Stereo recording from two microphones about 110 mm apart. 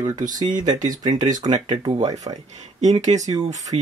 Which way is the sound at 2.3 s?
90° right.